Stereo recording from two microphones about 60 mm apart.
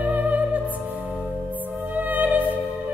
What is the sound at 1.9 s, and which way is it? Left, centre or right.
Music, right.